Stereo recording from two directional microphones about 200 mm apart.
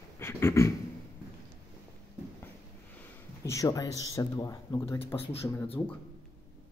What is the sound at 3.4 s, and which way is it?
Speech, 15° left (ahead or behind).